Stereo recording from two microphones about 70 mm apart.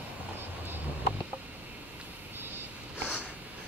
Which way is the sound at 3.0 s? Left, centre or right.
Right.